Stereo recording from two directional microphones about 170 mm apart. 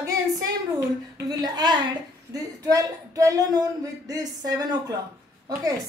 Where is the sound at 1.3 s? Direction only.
25° right (ahead or behind).